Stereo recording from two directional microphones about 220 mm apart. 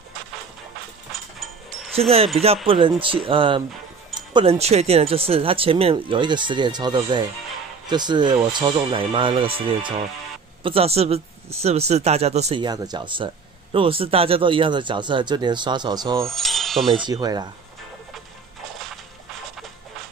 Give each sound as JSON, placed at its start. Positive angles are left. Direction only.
{"t": 2.0, "sound": "speech", "side_deg": -25}
{"t": 10.6, "sound": "speech", "side_deg": -25}
{"t": 16.2, "sound": "speech", "side_deg": 0}
{"t": 16.9, "sound": "speech", "side_deg": -20}